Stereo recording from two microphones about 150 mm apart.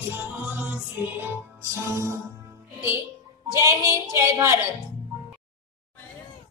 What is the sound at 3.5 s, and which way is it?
A woman's voice, 20° right (ahead or behind).